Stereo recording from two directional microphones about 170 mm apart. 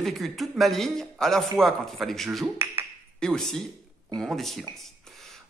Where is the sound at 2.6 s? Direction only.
15° right (ahead or behind).